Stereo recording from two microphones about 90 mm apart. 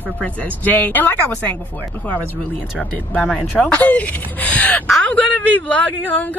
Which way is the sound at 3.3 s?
10° left (ahead or behind).